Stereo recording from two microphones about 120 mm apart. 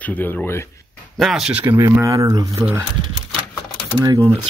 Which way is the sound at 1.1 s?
Centre (ahead or behind).